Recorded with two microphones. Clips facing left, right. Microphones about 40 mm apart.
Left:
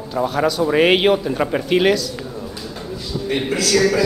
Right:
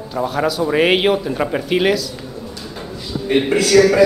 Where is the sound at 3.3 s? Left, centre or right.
Centre.